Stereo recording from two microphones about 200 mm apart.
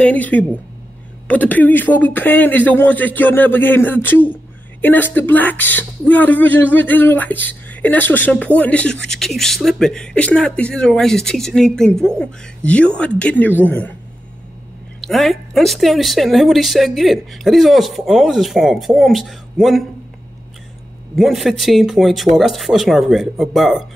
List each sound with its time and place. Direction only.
0.0 s speech: 5° left (ahead or behind)
15.0 s speech: centre (ahead or behind)
21.2 s speech: centre (ahead or behind)